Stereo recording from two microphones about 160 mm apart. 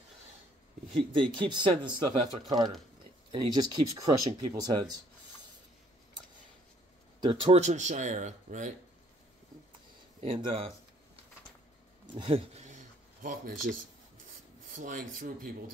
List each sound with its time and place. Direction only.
1.3 s speech: 30° right (ahead or behind)
2.4 s speech: 25° right (ahead or behind)
7.2 s speech: 30° right (ahead or behind); by 8.7 s 55° right (ahead or behind)
10.2 s speech: 35° right (ahead or behind)
12.2 s a sound: 40° right (ahead or behind); by 13.7 s 60° right (ahead or behind)
14.7 s speech: 55° right (ahead or behind)